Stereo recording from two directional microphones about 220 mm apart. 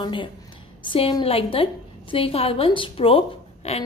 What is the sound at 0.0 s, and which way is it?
A woman's voice, 20° left (ahead or behind).